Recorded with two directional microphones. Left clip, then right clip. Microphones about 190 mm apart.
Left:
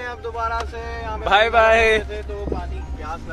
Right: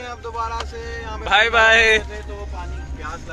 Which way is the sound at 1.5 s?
5° left (ahead or behind).